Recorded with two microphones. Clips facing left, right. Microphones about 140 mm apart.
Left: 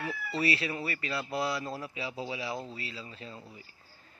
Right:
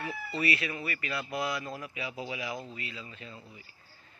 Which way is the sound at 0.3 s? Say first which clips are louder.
Left 1 dB; 30° left (ahead or behind).